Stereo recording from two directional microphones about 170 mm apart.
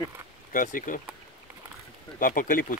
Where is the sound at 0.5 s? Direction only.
50° left (ahead or behind).